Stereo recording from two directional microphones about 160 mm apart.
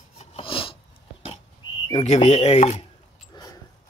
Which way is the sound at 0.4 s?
35° left (ahead or behind).